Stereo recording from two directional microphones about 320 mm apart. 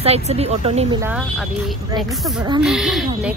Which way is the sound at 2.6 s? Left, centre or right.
Centre.